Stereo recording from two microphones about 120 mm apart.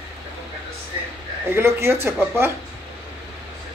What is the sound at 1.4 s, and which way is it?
Speech, 20° right (ahead or behind).